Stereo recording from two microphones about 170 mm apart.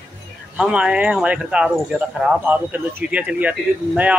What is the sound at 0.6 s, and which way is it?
Speech, 5° right (ahead or behind).